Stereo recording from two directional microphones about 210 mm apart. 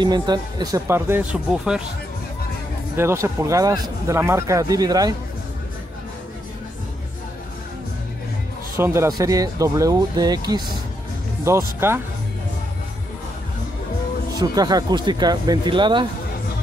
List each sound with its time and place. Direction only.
0.0 s speech: 20° right (ahead or behind)
3.0 s speech: 15° right (ahead or behind)
8.7 s speech: 10° right (ahead or behind)
14.4 s speech: 20° right (ahead or behind)